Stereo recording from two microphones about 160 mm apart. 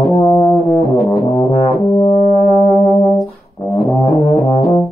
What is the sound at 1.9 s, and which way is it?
Brass instrument, 45° left (ahead or behind).